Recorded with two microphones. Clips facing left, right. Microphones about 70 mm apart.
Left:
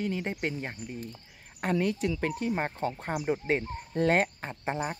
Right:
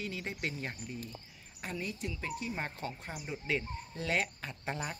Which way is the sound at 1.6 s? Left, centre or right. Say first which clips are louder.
Left 11 dB; left.